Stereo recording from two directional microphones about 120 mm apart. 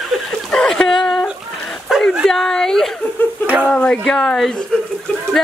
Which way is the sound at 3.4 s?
15° right (ahead or behind).